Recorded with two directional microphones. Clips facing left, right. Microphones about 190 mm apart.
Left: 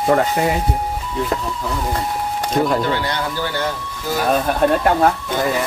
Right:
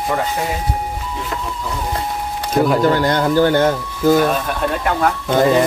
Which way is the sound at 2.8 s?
45° right (ahead or behind).